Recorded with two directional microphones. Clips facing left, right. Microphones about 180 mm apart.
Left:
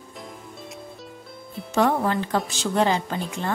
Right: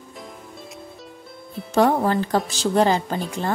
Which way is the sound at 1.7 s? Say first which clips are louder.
Right 3 dB; 35° right (ahead or behind).